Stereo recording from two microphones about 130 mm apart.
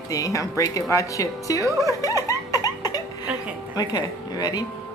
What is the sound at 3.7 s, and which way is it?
Speech, 30° left (ahead or behind).